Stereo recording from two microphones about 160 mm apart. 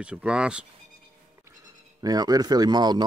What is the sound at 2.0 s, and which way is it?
Speech, 25° right (ahead or behind).